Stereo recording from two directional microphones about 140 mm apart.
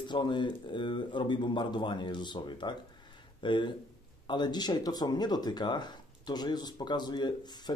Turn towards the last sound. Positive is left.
turn(degrees=30)  # may be behind; listen again after turning